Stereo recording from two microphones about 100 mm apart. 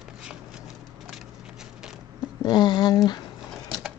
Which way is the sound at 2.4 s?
45° left (ahead or behind).